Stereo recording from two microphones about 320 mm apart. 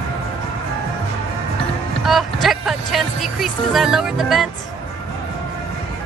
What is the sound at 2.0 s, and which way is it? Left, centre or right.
Speech, centre.